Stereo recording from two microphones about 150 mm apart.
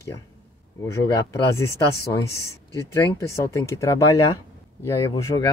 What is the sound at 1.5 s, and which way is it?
Speech, 20° left (ahead or behind).